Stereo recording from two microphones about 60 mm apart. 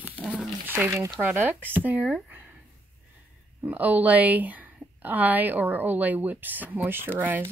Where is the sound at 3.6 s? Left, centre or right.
Right.